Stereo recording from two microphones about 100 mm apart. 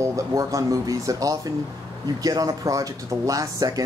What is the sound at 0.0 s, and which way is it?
Speech, 30° right (ahead or behind).